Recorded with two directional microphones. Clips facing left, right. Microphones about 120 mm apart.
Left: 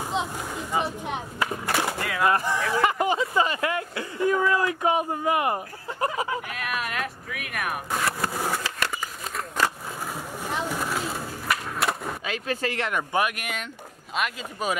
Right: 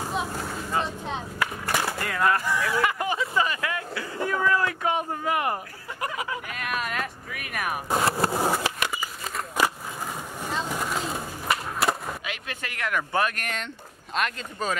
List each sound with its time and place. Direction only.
0.0 s a sound: 20° left (ahead or behind)
0.4 s speech: 15° left (ahead or behind); by 4.0 s 30° left (ahead or behind)
4.3 s speech: 15° left (ahead or behind)
6.5 s speech: centre (ahead or behind)
7.9 s speech: 30° right (ahead or behind)
8.5 s a sound: 20° right (ahead or behind)
8.9 s a sound: 5° right (ahead or behind)
10.1 s vehicle: 15° left (ahead or behind)
11.8 s skateboard: centre (ahead or behind)
12.3 s speech: 35° left (ahead or behind); by 14.8 s 10° left (ahead or behind)